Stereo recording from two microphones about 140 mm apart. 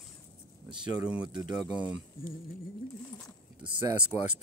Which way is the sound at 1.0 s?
10° right (ahead or behind).